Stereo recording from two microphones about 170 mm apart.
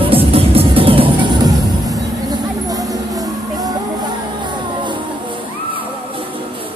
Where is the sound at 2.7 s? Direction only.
20° right (ahead or behind).